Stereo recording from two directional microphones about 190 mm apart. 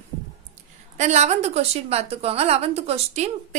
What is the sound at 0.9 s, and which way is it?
A woman's voice, 35° right (ahead or behind).